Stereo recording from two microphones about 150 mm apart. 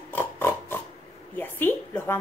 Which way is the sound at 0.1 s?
15° left (ahead or behind).